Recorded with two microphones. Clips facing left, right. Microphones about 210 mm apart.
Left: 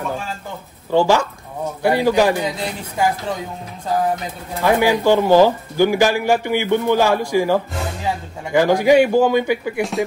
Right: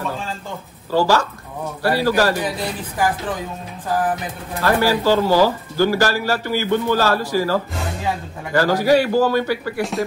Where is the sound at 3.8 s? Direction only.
25° left (ahead or behind).